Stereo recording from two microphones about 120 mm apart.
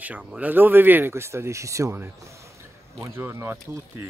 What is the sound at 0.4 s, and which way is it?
Speech, 15° right (ahead or behind).